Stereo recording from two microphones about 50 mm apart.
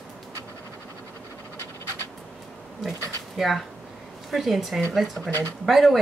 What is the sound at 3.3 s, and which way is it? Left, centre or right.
Speech, centre.